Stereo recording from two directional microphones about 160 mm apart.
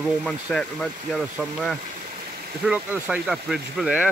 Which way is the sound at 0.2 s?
Centre (ahead or behind).